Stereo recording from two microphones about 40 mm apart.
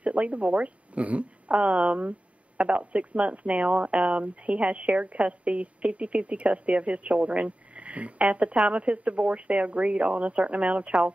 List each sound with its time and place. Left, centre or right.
0.0 s speech: right